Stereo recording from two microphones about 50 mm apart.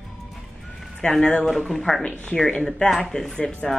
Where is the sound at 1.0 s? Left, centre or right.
Centre.